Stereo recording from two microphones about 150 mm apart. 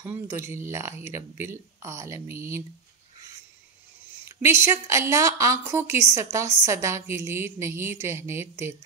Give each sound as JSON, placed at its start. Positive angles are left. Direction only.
{"t": 0.3, "sound": "a woman's voice", "side_deg": -15}
{"t": 4.4, "sound": "a woman's voice", "side_deg": -15}